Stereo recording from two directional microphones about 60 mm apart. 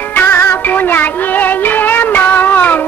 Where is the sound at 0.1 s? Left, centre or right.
Left.